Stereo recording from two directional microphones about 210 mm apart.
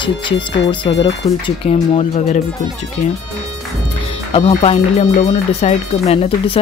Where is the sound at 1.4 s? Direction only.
30° left (ahead or behind).